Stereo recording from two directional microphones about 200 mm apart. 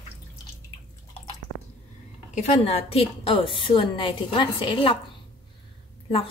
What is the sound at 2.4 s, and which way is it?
A woman's voice, 35° left (ahead or behind).